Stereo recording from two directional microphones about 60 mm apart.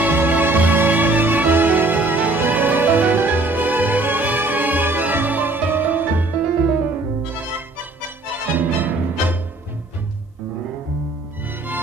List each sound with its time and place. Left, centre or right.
0.0 s music: right
8.5 s music: right